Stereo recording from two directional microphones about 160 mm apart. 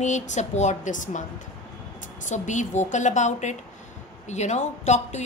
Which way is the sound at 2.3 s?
50° left (ahead or behind).